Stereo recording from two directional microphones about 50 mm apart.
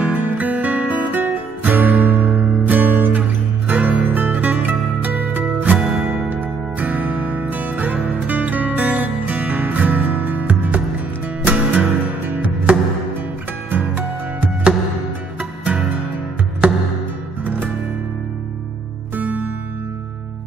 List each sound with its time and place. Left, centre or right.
0.0 s music: right
5.8 s music: right
6.2 s music: right
13.7 s music: right
15.6 s music: right
19.1 s music: right